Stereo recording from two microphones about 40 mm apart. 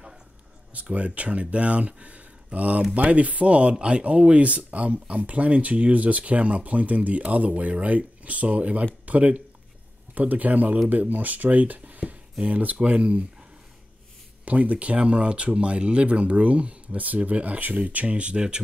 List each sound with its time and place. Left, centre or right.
0.7 s speech: right
14.4 s speech: right